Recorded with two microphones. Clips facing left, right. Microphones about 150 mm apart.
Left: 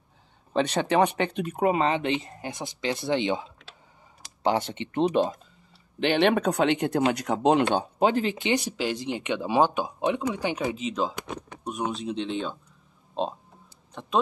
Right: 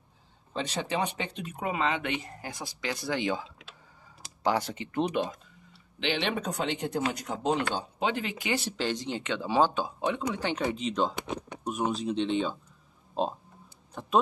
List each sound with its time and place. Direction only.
0.5 s speech: 65° left (ahead or behind); by 5.3 s 30° left (ahead or behind)
5.9 s speech: 50° left (ahead or behind); by 7.6 s 70° left (ahead or behind)
8.0 s speech: 35° left (ahead or behind)
8.6 s speech: 10° left (ahead or behind)
13.2 s a sound: 5° right (ahead or behind)